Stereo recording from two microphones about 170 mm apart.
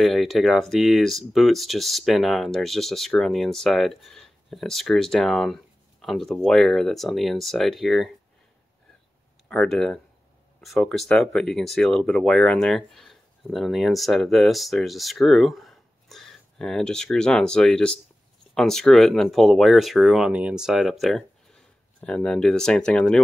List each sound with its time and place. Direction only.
0.0 s speech: centre (ahead or behind)
9.5 s speech: 5° left (ahead or behind)